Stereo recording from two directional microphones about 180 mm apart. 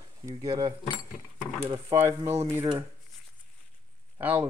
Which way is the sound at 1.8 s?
15° right (ahead or behind).